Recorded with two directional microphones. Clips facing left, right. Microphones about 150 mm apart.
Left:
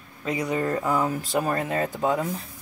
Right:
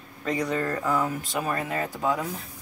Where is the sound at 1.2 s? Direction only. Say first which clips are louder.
Left 4 dB; 40° left (ahead or behind).